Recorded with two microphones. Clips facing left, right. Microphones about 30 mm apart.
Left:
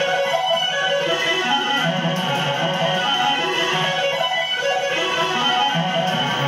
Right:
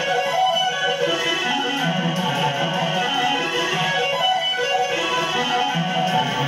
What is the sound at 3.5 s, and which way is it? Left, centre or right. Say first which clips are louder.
Music: left 2 dB; centre.